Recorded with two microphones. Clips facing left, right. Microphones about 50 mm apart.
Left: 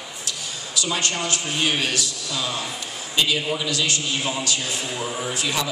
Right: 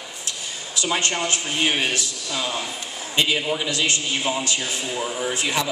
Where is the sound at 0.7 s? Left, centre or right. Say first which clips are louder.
Right 2 dB; right.